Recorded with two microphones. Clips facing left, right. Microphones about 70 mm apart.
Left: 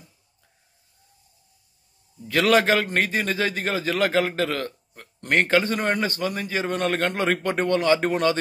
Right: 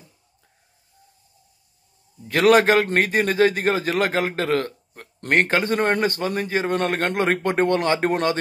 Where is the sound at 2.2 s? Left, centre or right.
Right.